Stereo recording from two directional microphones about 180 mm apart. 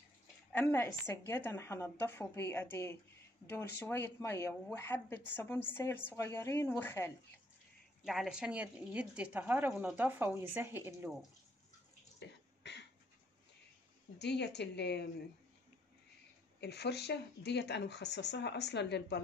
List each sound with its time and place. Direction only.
0.5 s speech: 10° left (ahead or behind)
8.0 s a woman's voice: centre (ahead or behind)
12.6 s a sound: 70° left (ahead or behind)
14.1 s speech: 70° left (ahead or behind)
16.5 s speech: 65° left (ahead or behind)